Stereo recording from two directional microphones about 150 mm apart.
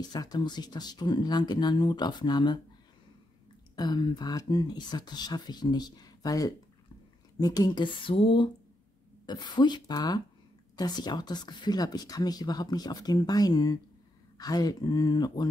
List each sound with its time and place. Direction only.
0.0 s speech: 25° left (ahead or behind)
3.7 s speech: 25° left (ahead or behind)